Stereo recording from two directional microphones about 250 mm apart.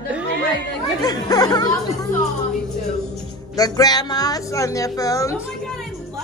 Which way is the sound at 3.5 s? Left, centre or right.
Centre.